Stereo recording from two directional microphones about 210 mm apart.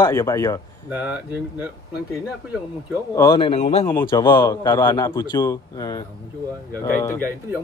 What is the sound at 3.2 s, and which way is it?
Speech, 20° left (ahead or behind).